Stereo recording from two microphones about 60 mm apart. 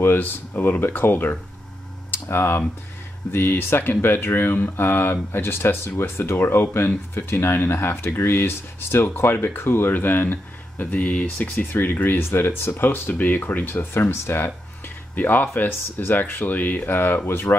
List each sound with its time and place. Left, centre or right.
0.0 s speech: left
2.0 s computer keyboard: left
3.3 s speech: left
15.1 s speech: left